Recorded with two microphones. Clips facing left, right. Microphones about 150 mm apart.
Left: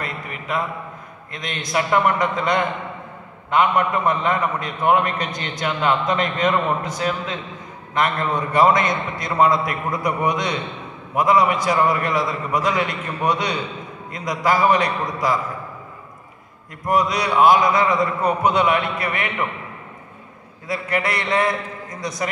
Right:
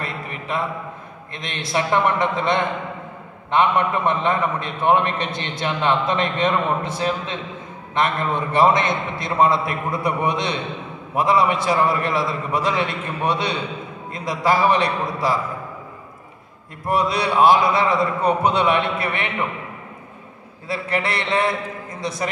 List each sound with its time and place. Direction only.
0.0 s a sound: 30° right (ahead or behind)
1.3 s a man's voice: 30° right (ahead or behind)
16.8 s a man's voice: 30° right (ahead or behind)
20.6 s a man's voice: 30° right (ahead or behind)